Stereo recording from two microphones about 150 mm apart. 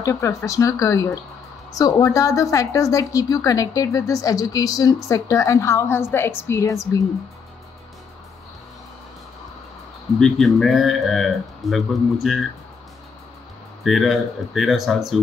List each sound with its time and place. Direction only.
0.0 s a woman's voice: 20° left (ahead or behind)
10.1 s speech: 5° left (ahead or behind)
13.8 s speech: centre (ahead or behind)